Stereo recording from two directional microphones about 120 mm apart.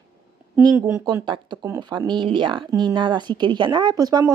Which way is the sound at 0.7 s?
20° right (ahead or behind).